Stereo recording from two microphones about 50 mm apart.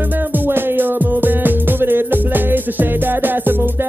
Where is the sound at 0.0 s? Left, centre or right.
Right.